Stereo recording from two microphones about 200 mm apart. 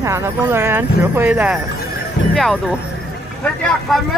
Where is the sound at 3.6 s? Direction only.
Centre (ahead or behind).